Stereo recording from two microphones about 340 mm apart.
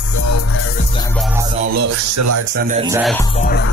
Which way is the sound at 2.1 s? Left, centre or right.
Right.